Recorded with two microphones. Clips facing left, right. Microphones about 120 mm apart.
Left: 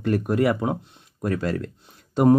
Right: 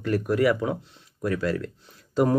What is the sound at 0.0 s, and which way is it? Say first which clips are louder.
Speech: left 1 dB; 25° left (ahead or behind).